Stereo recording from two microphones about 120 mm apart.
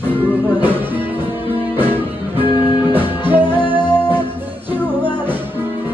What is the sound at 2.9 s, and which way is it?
Music, 15° right (ahead or behind).